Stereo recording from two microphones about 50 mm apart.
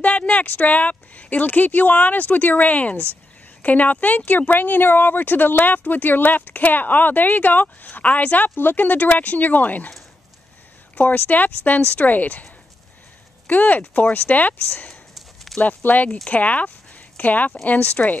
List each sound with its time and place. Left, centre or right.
0.0 s speech: left
8.5 s speech: left
11.0 s speech: left
13.5 s speech: left
15.1 s clip-clop: centre
15.6 s speech: left